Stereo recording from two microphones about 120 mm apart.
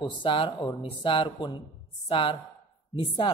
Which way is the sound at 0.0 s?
45° left (ahead or behind).